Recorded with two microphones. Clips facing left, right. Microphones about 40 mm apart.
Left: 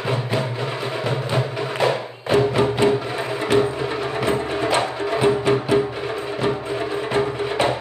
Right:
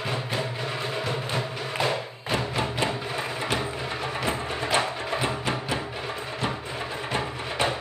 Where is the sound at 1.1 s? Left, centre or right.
Centre.